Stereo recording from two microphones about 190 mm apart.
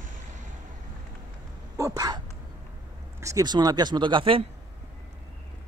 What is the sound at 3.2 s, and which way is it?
Speech, 20° right (ahead or behind).